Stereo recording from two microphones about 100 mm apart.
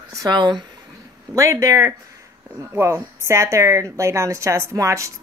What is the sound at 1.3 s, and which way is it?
A woman's voice, 35° right (ahead or behind).